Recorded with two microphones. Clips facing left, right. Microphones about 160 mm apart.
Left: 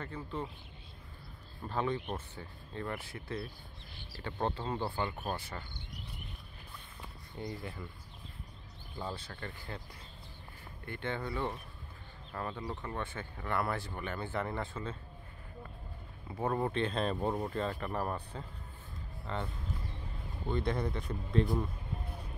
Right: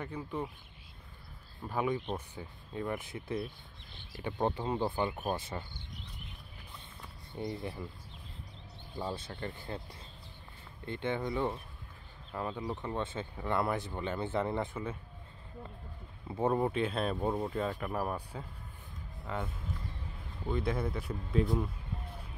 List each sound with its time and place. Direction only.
0.0 s speech: 15° right (ahead or behind)
1.7 s speech: 10° right (ahead or behind)
7.3 s speech: 20° right (ahead or behind)
8.9 s speech: 20° right (ahead or behind)
10.9 s speech: 20° right (ahead or behind)
16.3 s speech: 20° right (ahead or behind)